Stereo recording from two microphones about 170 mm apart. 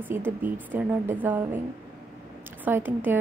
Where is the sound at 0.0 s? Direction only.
10° right (ahead or behind).